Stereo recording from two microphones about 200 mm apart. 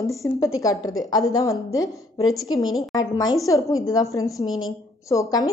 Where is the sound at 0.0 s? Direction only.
15° left (ahead or behind).